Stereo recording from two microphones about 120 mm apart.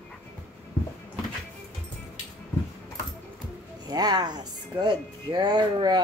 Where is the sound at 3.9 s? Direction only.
35° right (ahead or behind).